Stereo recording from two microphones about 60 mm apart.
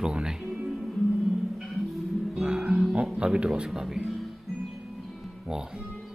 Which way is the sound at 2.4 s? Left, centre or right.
Centre.